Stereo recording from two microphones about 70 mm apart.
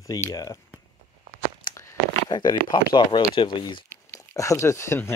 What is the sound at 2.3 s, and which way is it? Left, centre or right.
Speech, left.